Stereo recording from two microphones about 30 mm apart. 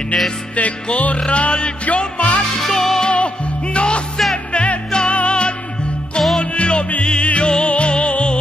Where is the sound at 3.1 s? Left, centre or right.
Left.